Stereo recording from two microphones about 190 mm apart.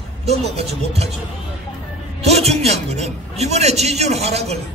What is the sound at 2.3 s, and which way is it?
A man's voice, 35° right (ahead or behind).